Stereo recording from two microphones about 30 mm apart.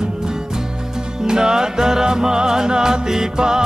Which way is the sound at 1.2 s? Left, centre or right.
Right.